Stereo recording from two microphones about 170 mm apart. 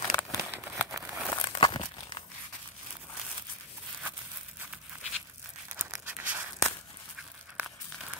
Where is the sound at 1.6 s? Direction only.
30° left (ahead or behind).